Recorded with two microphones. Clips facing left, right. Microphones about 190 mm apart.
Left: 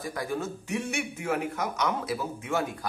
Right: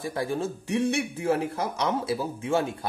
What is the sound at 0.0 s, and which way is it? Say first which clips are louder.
Speech: right 3 dB; 30° right (ahead or behind).